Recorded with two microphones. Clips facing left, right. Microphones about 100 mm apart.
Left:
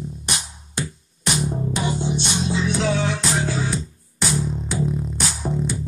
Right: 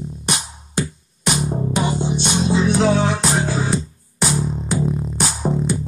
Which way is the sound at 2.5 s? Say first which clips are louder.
Right 6 dB; 45° right (ahead or behind).